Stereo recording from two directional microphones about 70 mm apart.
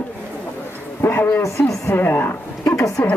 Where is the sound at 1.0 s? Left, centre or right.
Left.